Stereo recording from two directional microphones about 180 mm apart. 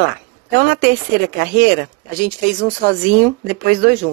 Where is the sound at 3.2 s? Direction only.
50° right (ahead or behind).